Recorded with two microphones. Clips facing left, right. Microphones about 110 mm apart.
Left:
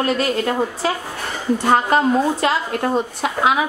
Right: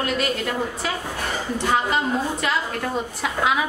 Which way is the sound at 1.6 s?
45° left (ahead or behind).